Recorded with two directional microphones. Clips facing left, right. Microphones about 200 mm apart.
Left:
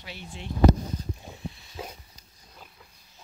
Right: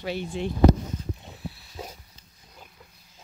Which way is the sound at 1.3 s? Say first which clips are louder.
Even; centre (ahead or behind).